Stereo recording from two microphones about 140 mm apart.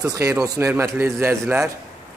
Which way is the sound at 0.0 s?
25° right (ahead or behind).